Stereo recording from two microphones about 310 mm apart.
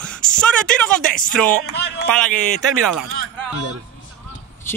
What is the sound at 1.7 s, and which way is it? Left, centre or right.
Speech, left.